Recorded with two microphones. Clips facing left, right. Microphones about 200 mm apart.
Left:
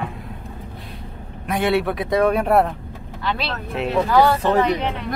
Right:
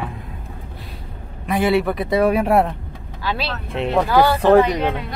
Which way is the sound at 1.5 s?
Centre (ahead or behind).